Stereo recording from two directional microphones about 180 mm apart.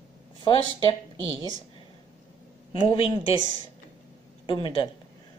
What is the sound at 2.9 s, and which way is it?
Speech, 30° left (ahead or behind).